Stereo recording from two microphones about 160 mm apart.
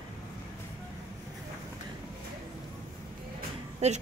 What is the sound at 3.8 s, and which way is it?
Speech, 40° right (ahead or behind).